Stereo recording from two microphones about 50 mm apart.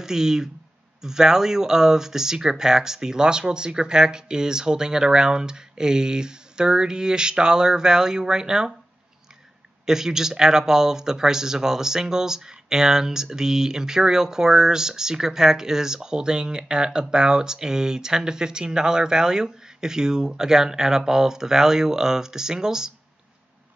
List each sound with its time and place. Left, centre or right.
0.0 s speech: centre
9.8 s speech: centre